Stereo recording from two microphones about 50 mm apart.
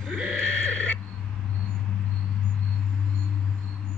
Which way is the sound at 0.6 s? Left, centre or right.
Left.